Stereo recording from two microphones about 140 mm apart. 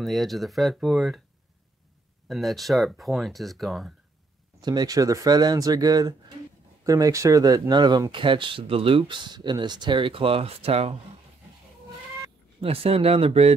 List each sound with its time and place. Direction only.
0.0 s speech: centre (ahead or behind)
2.2 s speech: centre (ahead or behind)
4.6 s speech: 30° right (ahead or behind); by 11.0 s 45° right (ahead or behind)
12.5 s speech: 45° right (ahead or behind)